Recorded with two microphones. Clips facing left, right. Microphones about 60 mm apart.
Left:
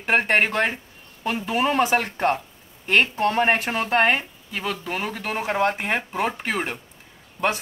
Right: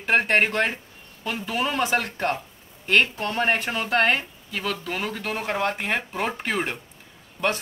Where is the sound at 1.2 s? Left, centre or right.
Left.